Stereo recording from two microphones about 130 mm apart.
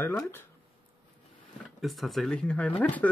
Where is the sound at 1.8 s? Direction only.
Centre (ahead or behind).